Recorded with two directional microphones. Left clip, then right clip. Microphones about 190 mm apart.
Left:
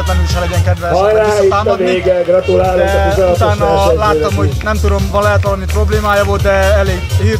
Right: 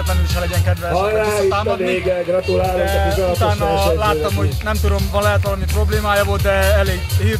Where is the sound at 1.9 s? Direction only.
40° right (ahead or behind).